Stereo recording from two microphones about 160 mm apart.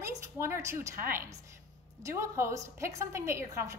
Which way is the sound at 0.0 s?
20° right (ahead or behind).